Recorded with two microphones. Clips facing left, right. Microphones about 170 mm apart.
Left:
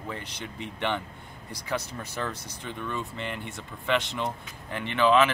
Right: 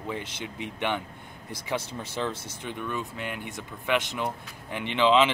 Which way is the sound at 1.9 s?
30° right (ahead or behind).